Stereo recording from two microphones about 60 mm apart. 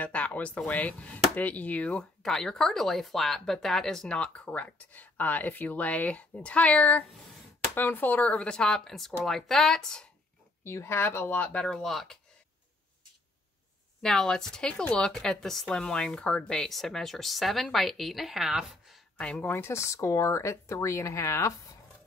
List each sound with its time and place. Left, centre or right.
0.0 s a sound: left
0.7 s speech: left
2.2 s speech: centre; by 8.5 s left
8.5 s speech: centre
10.6 s speech: left
11.5 s speech: centre
14.0 s a woman's voice: centre
19.1 s speech: centre
19.5 s speech: left